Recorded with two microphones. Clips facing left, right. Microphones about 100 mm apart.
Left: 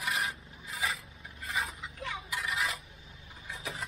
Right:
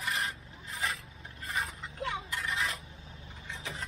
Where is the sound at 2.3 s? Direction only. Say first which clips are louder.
Even; 5° left (ahead or behind).